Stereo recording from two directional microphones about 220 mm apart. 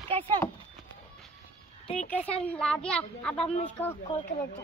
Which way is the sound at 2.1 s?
5° left (ahead or behind).